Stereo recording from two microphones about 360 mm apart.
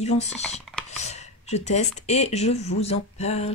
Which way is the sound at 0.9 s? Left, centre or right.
Centre.